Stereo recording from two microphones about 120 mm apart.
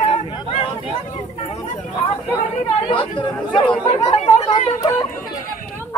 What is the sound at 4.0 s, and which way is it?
Speech, 60° left (ahead or behind).